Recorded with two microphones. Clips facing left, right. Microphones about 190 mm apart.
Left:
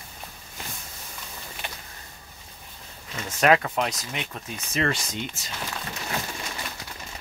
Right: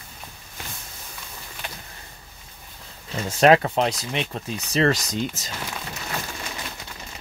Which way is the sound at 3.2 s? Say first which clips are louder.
Right 4 dB; 30° right (ahead or behind).